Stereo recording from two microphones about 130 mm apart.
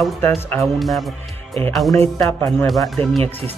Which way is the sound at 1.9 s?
20° left (ahead or behind).